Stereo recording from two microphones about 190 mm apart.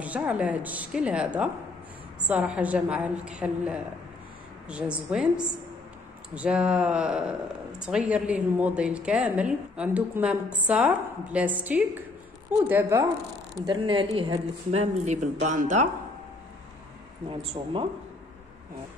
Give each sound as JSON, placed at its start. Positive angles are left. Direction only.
{"t": 0.0, "sound": "a woman's voice", "side_deg": -5}
{"t": 6.3, "sound": "a woman's voice", "side_deg": -5}
{"t": 13.7, "sound": "a woman's voice", "side_deg": -25}
{"t": 17.3, "sound": "speech", "side_deg": -25}